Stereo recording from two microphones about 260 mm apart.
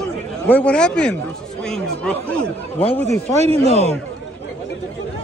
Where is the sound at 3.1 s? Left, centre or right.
Right.